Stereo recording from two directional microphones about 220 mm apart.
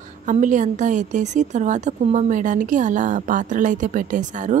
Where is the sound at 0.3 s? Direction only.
35° right (ahead or behind).